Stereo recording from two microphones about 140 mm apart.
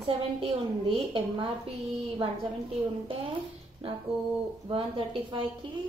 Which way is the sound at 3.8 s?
40° right (ahead or behind).